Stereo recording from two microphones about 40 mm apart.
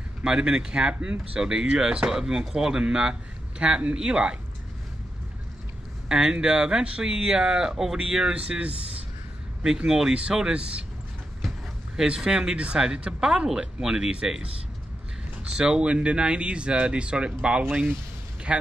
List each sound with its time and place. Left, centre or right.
0.2 s speech: centre
6.0 s speech: centre
8.5 s a man's voice: right
9.8 s speech: centre
10.1 s speech: right
12.0 s speech: centre
15.5 s speech: right